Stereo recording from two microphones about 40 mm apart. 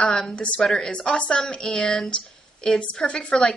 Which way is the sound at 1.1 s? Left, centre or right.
Left.